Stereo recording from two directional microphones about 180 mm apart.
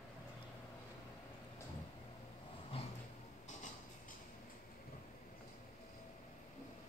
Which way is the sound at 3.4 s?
45° left (ahead or behind).